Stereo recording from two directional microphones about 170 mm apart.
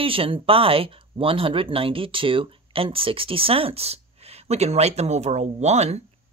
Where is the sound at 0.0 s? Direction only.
35° right (ahead or behind).